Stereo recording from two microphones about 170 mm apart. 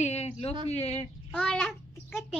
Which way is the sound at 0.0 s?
40° left (ahead or behind).